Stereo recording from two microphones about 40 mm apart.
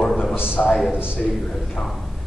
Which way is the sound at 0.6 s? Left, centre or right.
Left.